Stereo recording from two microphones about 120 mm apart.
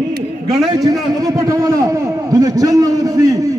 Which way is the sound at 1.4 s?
30° right (ahead or behind).